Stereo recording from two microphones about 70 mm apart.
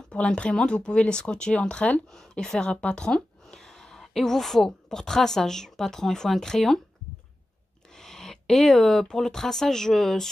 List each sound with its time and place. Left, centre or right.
0.1 s a woman's voice: centre
7.9 s speech: centre